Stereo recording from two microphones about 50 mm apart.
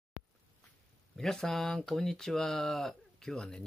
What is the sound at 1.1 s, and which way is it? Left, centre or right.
Speech, centre.